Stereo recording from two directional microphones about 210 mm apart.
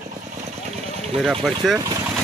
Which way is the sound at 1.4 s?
Centre (ahead or behind).